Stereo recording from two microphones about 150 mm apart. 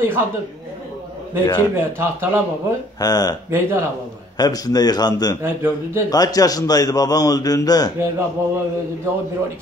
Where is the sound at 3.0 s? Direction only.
25° left (ahead or behind).